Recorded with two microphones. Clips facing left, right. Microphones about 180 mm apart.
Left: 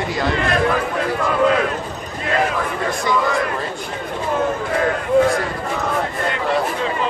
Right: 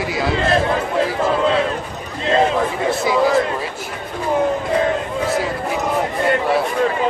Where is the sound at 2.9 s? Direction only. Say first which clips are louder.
Even; 5° right (ahead or behind).